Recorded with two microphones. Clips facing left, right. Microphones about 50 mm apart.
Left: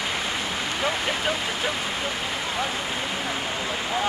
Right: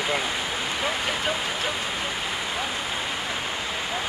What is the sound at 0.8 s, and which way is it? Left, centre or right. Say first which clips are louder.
Vehicle: left 2 dB; centre.